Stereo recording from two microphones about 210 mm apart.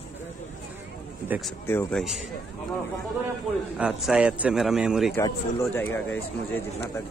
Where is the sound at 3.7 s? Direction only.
5° right (ahead or behind).